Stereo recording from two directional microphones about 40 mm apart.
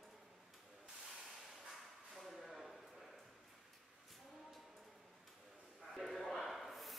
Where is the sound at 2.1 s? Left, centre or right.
Centre.